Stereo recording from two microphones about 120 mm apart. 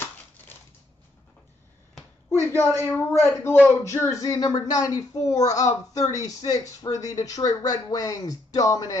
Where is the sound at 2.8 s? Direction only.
20° left (ahead or behind).